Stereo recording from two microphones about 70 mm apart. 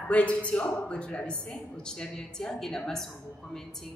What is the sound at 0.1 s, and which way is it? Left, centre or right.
A woman's voice, centre.